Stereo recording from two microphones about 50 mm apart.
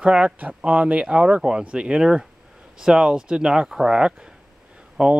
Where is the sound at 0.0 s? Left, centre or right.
Right.